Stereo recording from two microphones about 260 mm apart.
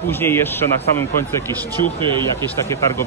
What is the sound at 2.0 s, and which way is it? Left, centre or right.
Speech, centre.